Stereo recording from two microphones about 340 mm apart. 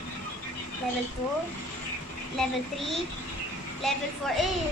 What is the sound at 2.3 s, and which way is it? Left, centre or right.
Speech, centre.